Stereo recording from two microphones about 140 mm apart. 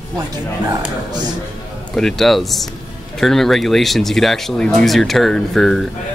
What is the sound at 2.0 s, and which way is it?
Speech, centre (ahead or behind).